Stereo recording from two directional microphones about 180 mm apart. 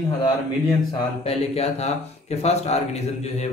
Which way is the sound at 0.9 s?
25° left (ahead or behind).